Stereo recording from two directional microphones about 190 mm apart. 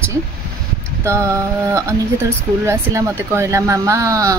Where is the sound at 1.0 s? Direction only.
15° right (ahead or behind).